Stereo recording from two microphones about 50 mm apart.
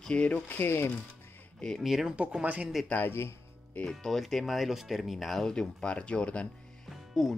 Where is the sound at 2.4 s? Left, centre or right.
Right.